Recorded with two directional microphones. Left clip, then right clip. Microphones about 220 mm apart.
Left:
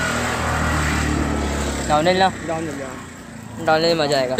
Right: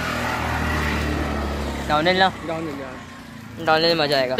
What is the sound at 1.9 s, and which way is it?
Speech, centre (ahead or behind).